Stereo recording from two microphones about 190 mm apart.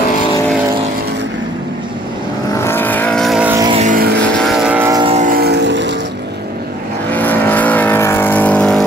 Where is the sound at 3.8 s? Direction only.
45° right (ahead or behind).